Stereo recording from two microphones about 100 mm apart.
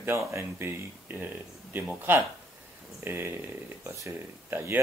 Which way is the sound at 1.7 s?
20° right (ahead or behind).